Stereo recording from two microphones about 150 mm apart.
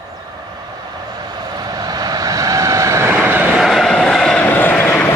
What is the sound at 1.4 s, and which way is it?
Vehicle, 25° right (ahead or behind).